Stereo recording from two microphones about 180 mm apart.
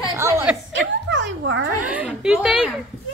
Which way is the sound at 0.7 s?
85° right.